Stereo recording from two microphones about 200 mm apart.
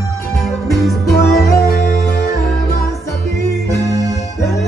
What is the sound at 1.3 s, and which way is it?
Music, 15° left (ahead or behind).